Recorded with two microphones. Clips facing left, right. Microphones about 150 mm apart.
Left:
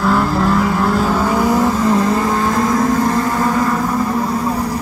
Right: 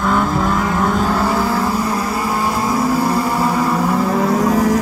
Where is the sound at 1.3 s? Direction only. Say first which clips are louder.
Left 3 dB; 15° left (ahead or behind).